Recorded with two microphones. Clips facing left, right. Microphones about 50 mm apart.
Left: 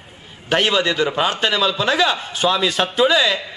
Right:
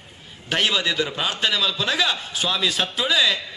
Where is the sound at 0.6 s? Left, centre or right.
Centre.